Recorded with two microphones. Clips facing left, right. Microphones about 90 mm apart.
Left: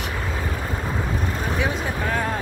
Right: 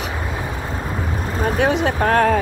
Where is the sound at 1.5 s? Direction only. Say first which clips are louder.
Right 9 dB; 65° right (ahead or behind).